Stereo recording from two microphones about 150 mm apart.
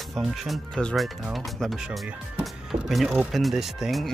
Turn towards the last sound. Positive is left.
turn(degrees=0)  # may be behind; listen again after turning